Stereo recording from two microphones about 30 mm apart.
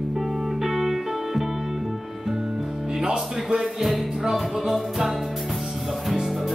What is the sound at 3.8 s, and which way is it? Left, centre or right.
Music, centre.